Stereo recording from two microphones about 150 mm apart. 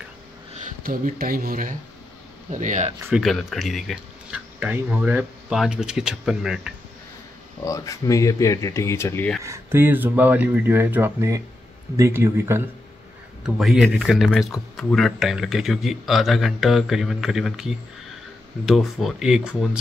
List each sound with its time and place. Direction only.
0.8 s speech: 75° right (ahead or behind)
2.5 s speech: 55° right (ahead or behind)
3.1 s speech: centre (ahead or behind)
7.6 s speech: 20° left (ahead or behind)
9.4 s speech: 15° right (ahead or behind)
13.6 s speech: centre (ahead or behind)